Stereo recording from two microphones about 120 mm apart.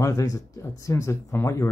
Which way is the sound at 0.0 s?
30° left (ahead or behind).